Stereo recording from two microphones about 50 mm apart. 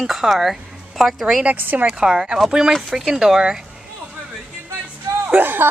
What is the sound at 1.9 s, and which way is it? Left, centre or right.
Speech, centre.